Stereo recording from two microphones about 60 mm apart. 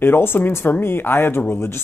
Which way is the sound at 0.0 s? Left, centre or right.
Left.